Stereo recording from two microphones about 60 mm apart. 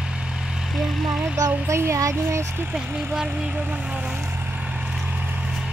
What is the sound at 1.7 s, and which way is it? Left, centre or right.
Speech, right.